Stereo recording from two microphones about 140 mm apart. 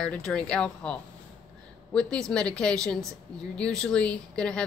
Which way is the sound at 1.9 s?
5° left (ahead or behind).